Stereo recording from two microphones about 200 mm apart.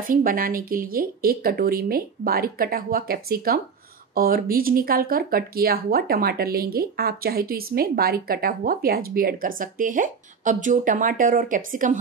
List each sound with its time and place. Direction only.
0.0 s speech: 45° right (ahead or behind)